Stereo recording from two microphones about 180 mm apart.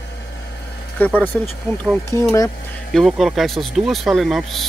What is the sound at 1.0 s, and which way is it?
Speech, 10° left (ahead or behind).